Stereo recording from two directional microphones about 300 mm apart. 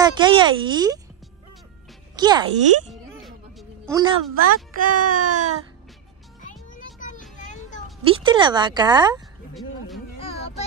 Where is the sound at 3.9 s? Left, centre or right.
Centre.